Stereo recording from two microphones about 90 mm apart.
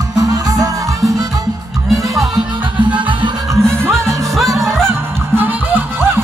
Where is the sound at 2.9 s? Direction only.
65° right (ahead or behind).